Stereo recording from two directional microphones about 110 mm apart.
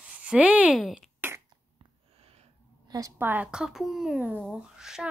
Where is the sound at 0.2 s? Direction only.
10° right (ahead or behind).